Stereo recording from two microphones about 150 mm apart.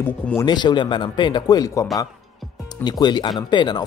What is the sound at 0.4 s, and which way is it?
Speech, 30° left (ahead or behind).